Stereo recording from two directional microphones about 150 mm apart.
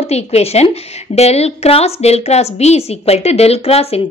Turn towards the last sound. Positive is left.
turn(degrees=40)  # may be behind; listen again after turning